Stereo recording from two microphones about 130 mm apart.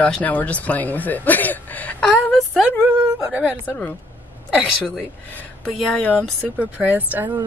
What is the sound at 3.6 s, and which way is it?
Speech, 10° left (ahead or behind).